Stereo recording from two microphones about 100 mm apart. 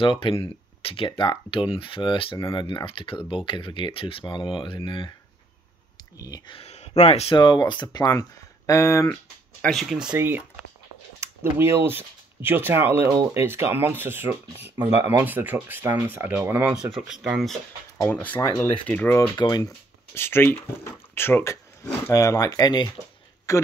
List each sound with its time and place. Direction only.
0.0 s speech: 60° left (ahead or behind)
6.1 s speech: 40° left (ahead or behind)
6.5 s speech: 90° left
7.3 s speech: 45° left (ahead or behind)
8.1 s speech: 35° left (ahead or behind)
9.7 s speech: centre (ahead or behind)
10.1 s speech: 20° right (ahead or behind)
16.9 s speech: 5° right (ahead or behind)
18.6 s speech: 20° left (ahead or behind)
19.1 s speech: 40° left (ahead or behind)
20.2 s speech: 25° left (ahead or behind)
22.1 s speech: 35° left (ahead or behind)
23.5 s speech: 30° left (ahead or behind)